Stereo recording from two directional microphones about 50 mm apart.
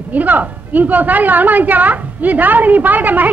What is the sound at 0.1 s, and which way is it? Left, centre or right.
A woman's voice, right.